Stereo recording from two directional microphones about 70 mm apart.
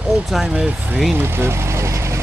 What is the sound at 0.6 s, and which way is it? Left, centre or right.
Speech, right.